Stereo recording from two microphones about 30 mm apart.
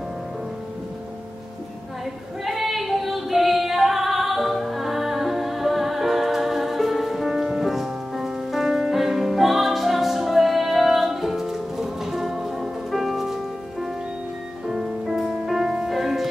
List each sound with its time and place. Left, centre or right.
2.4 s female singing: centre
14.7 s music: centre
15.5 s music: right
15.9 s music: centre